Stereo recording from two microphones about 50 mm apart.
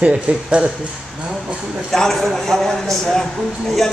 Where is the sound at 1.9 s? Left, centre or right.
Centre.